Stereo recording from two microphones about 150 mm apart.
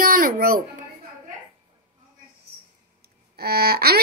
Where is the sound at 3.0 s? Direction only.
90° right.